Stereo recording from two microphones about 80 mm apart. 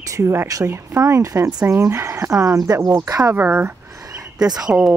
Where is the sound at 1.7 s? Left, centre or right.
Right.